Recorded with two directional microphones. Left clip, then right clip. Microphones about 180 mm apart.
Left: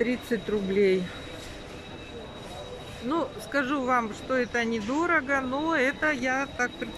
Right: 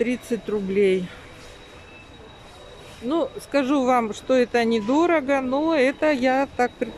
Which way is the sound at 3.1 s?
15° right (ahead or behind).